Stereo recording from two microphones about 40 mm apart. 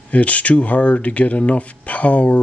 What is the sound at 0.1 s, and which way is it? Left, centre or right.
Speech, left.